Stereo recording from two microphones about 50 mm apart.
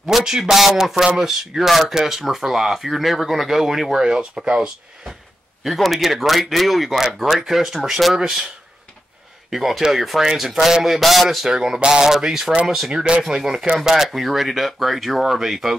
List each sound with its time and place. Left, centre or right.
0.2 s speech: centre
5.6 s speech: centre
9.5 s speech: centre
12.9 s speech: centre